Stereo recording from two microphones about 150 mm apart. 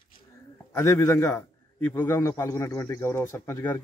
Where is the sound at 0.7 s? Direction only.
15° left (ahead or behind).